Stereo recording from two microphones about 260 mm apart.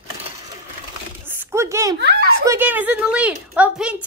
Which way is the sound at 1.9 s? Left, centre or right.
Right.